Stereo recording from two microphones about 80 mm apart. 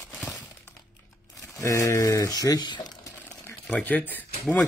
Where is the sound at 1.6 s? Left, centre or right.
Left.